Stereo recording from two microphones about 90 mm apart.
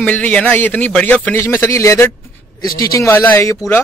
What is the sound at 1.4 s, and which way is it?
Speech, 30° left (ahead or behind).